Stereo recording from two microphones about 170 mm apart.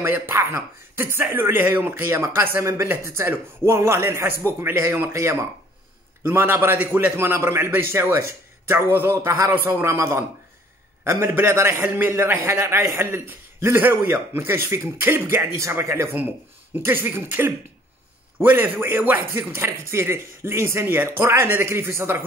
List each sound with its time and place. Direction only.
0.0 s a man's voice: 15° right (ahead or behind)